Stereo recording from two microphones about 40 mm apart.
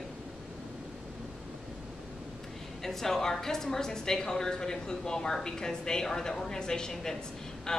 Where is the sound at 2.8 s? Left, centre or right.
Centre.